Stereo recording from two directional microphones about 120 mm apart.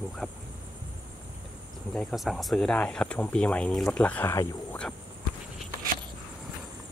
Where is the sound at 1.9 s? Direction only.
Centre (ahead or behind).